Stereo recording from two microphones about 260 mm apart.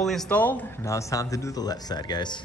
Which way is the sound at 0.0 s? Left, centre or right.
Centre.